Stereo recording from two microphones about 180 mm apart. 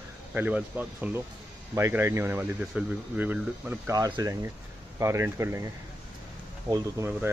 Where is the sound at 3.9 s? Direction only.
20° right (ahead or behind).